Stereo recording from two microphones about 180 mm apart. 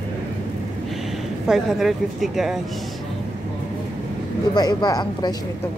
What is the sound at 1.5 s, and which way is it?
Speech, centre (ahead or behind).